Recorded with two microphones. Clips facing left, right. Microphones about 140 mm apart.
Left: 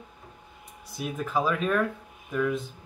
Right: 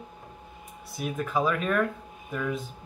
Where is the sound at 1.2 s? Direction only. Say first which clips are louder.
Even; 5° left (ahead or behind).